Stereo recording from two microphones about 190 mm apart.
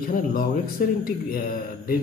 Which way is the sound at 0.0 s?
50° left (ahead or behind).